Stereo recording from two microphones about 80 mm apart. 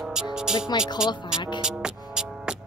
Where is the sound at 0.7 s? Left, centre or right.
Left.